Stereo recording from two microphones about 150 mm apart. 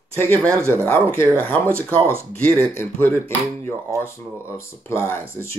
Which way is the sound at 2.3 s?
5° left (ahead or behind).